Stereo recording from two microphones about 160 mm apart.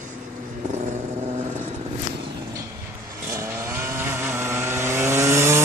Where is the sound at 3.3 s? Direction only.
15° right (ahead or behind).